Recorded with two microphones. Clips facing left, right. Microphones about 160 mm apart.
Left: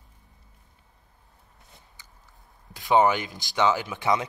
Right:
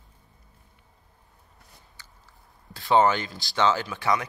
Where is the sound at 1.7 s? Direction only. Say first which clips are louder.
Even; 20° left (ahead or behind).